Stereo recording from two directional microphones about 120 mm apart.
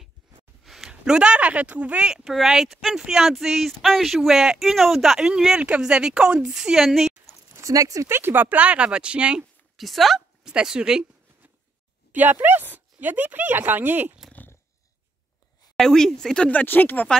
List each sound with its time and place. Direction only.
0.7 s speech: 5° right (ahead or behind)
7.5 s speech: 25° right (ahead or behind); by 11.1 s 5° right (ahead or behind)
12.1 s speech: 15° right (ahead or behind)
14.3 s purr: 15° left (ahead or behind)
15.7 s speech: 5° left (ahead or behind)